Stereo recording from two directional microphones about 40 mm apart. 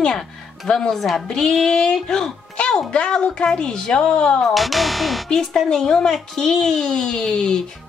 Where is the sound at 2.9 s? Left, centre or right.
Left.